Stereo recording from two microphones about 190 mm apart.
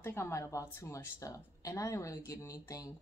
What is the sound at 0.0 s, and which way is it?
Speech, 15° left (ahead or behind).